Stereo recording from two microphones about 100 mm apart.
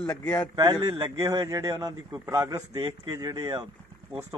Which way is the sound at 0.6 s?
40° right (ahead or behind).